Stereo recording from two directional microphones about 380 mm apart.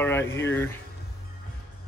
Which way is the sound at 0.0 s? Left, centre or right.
Centre.